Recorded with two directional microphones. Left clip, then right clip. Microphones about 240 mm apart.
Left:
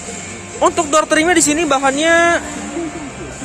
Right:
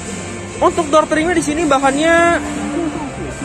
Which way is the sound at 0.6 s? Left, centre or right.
Centre.